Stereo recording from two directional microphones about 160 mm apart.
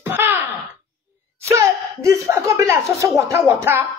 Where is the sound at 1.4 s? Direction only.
20° right (ahead or behind).